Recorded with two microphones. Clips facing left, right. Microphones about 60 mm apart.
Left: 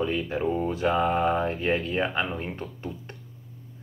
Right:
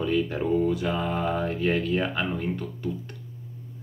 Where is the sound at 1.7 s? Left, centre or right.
Left.